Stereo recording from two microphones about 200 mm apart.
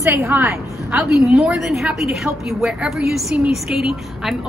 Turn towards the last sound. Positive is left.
turn(degrees=0)  # may be behind; listen again after turning